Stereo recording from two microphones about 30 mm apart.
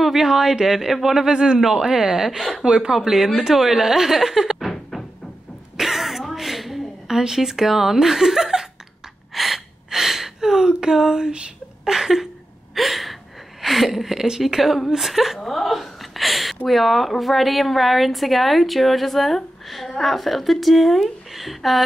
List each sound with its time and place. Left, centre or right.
0.0 s a woman's voice: centre
2.5 s speech: right
2.9 s a woman's voice: centre
5.8 s cough: centre
7.1 s speech: centre
9.3 s gasp: centre; by 10.9 s right
10.9 s a woman's voice: centre
12.7 s gasp: centre
14.4 s a woman's voice: centre
15.4 s a woman's voice: centre